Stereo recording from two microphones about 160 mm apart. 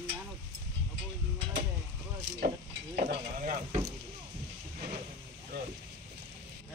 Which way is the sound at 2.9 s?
60° right (ahead or behind).